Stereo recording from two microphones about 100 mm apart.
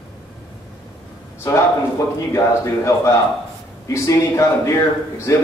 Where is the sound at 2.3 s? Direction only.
30° left (ahead or behind).